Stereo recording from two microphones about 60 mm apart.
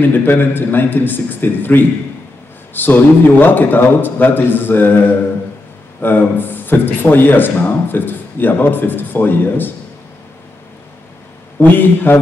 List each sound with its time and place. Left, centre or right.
0.0 s a man's voice: left
11.6 s a man's voice: left